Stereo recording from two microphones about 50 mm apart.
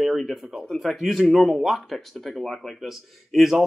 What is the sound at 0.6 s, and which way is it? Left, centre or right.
Speech, centre.